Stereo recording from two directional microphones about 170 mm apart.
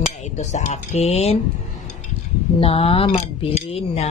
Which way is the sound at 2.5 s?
35° left (ahead or behind).